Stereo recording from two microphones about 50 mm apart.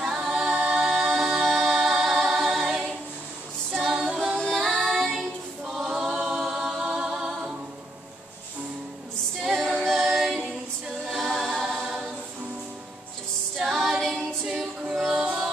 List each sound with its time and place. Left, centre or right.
0.0 s a capella: centre
0.7 s music: centre
2.1 s a capella: centre
3.8 s music: centre
6.1 s a capella: centre
9.4 s music: centre
11.1 s a capella: centre
13.6 s female singing: centre
14.1 s music: centre